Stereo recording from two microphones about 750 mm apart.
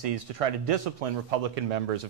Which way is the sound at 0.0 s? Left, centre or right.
Right.